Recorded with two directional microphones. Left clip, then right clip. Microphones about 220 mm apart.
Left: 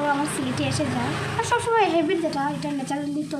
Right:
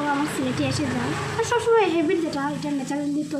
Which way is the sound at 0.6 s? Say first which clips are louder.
Even; 15° left (ahead or behind).